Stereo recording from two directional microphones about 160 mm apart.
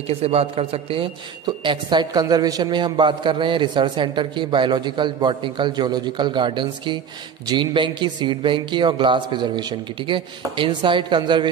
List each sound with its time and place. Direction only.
0.2 s a man's voice: 40° right (ahead or behind)